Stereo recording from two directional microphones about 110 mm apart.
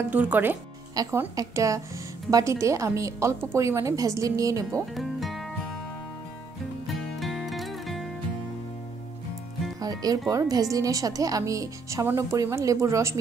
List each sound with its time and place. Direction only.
0.1 s speech: 15° right (ahead or behind)
1.0 s a woman's voice: 35° right (ahead or behind)
4.9 s music: centre (ahead or behind)
6.9 s music: centre (ahead or behind)
9.8 s speech: 35° right (ahead or behind)